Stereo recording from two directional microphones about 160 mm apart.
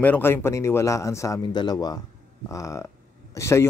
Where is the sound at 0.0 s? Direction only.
10° left (ahead or behind).